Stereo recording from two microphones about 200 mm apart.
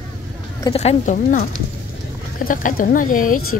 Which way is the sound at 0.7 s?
30° left (ahead or behind).